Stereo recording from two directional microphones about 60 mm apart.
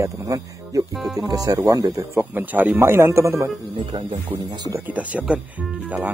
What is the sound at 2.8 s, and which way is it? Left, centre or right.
Speech, right.